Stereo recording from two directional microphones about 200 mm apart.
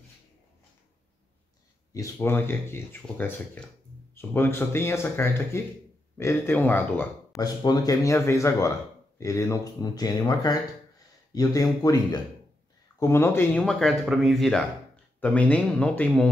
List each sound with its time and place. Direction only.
2.0 s speech: 10° left (ahead or behind)